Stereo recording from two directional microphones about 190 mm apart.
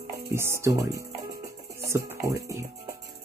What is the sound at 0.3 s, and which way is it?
Speech, 15° right (ahead or behind).